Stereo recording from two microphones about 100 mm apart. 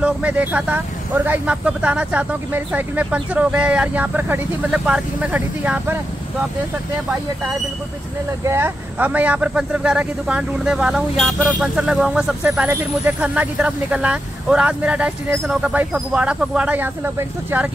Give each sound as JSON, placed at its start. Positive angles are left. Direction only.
{"t": 0.0, "sound": "speech", "side_deg": -15}
{"t": 8.5, "sound": "speech", "side_deg": -25}